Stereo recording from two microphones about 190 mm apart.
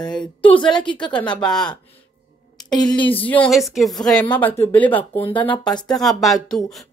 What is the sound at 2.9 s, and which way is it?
Speech, 25° left (ahead or behind).